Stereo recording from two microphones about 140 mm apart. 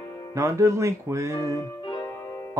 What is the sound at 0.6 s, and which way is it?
Music, 20° right (ahead or behind).